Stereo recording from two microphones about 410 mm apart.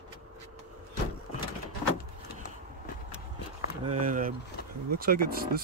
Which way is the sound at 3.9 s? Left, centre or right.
Centre.